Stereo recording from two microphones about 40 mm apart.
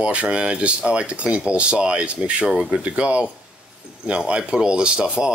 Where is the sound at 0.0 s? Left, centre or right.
Right.